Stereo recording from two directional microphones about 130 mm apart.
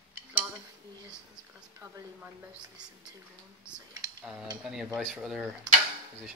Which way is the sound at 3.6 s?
5° right (ahead or behind).